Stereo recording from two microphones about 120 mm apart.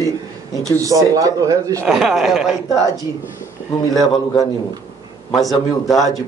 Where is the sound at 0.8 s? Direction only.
30° right (ahead or behind).